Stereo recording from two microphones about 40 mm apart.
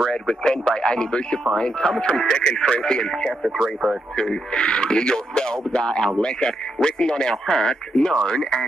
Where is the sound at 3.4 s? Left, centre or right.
Centre.